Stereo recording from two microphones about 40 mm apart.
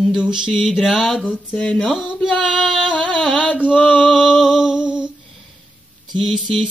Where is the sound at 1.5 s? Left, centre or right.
Left.